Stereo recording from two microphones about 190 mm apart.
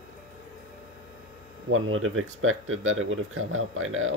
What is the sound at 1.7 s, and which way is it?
Speech, 90° right.